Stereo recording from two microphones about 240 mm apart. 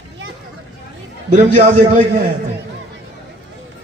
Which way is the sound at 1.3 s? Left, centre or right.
Right.